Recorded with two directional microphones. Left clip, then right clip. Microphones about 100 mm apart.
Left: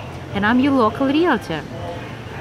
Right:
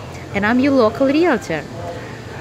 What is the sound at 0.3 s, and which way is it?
A woman's voice, 5° left (ahead or behind).